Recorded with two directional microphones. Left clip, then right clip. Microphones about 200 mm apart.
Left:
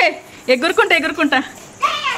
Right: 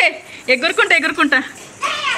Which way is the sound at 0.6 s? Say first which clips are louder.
Left 1 dB; 35° left (ahead or behind).